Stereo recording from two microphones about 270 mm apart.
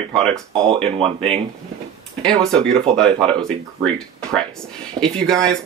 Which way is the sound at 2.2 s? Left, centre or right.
Centre.